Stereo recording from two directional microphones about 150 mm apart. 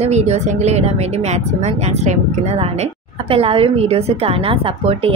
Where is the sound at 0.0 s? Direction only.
45° right (ahead or behind).